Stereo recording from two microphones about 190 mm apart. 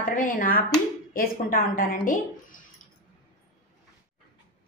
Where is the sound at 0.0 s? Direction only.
45° left (ahead or behind).